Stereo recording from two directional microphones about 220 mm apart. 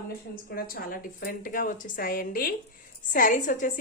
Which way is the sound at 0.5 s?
45° left (ahead or behind).